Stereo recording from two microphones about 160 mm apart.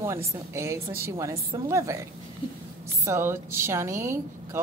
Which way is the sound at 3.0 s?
15° right (ahead or behind).